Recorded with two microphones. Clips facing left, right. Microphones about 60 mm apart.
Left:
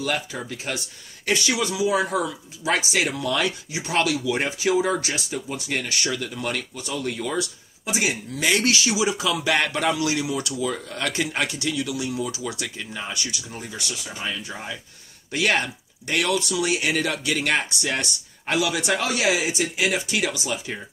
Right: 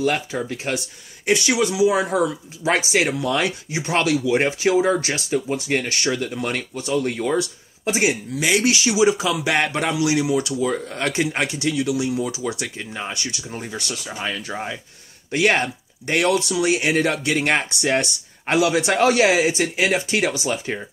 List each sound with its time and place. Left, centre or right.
0.0 s speech: right
8.4 s speech: centre
8.8 s speech: right